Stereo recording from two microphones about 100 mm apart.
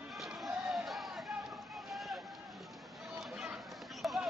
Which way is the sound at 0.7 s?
Centre (ahead or behind).